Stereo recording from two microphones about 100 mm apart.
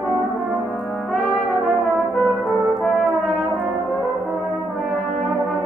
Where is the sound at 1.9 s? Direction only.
Centre (ahead or behind).